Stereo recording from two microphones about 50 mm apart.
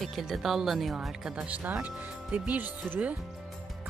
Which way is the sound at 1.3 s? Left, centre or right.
Right.